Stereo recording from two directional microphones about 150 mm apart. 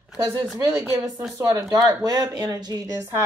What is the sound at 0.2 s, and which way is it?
Speech, 25° right (ahead or behind).